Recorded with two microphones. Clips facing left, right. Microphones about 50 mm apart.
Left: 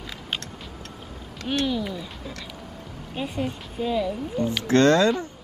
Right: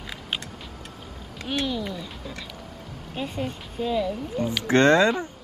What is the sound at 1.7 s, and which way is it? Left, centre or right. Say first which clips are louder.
A woman's voice: left 2 dB; centre.